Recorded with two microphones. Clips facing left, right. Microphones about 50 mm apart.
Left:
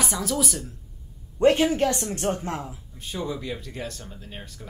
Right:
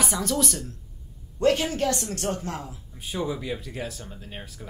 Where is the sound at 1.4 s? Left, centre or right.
Centre.